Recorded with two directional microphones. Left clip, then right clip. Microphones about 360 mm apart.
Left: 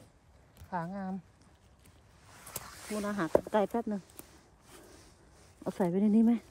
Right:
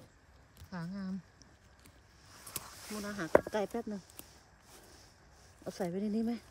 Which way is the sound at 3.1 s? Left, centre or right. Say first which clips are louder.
Left 1 dB; centre.